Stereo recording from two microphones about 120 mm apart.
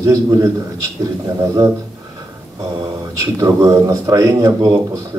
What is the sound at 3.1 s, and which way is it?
Speech, 30° right (ahead or behind).